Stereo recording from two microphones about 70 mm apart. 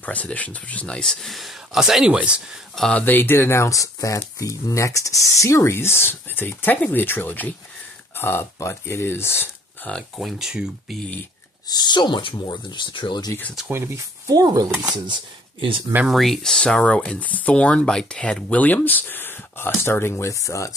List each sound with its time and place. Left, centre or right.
0.0 s speech: left
1.2 s speech: centre
2.9 s speech: left
10.1 s speech: centre
11.7 s speech: left
13.7 s speech: right
14.3 s speech: right
16.1 s speech: centre; by 20.7 s left